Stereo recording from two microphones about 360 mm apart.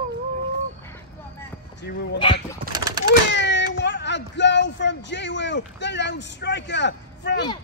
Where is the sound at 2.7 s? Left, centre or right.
Centre.